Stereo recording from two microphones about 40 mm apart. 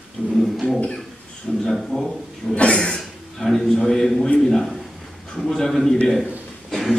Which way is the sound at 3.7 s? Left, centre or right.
Centre.